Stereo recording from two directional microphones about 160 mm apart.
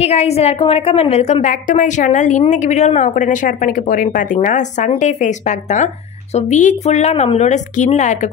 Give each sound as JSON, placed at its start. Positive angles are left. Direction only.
{"t": 0.0, "sound": "a woman's voice", "side_deg": 40}